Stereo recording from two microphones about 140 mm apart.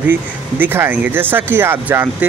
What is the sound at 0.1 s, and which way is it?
Speech, 15° right (ahead or behind).